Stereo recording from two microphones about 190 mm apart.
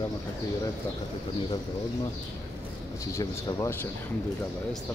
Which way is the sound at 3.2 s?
15° left (ahead or behind).